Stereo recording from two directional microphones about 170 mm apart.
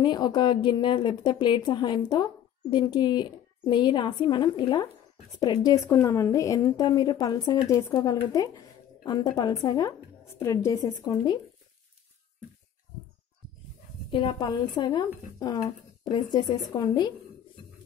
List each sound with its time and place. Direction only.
0.0 s a woman's voice: 25° left (ahead or behind)
14.1 s a woman's voice: 25° left (ahead or behind)